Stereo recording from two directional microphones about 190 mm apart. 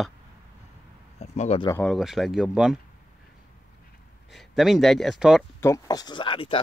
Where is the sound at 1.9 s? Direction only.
Centre (ahead or behind).